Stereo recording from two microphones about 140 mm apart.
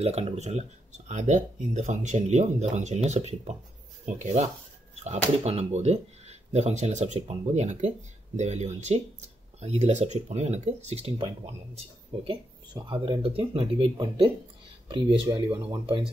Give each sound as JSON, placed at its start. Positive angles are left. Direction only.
{"t": 0.0, "sound": "speech", "side_deg": -45}